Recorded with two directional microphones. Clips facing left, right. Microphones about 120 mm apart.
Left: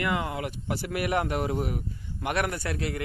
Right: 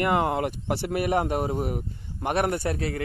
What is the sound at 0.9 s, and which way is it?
A man's voice, 30° right (ahead or behind).